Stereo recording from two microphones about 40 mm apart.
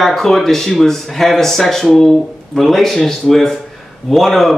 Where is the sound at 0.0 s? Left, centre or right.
Centre.